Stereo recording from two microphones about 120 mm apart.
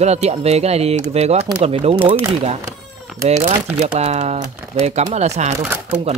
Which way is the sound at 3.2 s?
70° right (ahead or behind).